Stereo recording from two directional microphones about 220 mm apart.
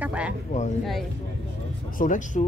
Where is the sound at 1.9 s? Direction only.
35° left (ahead or behind).